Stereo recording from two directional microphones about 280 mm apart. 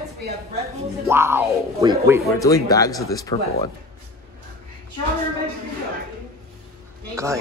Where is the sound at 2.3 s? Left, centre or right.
Centre.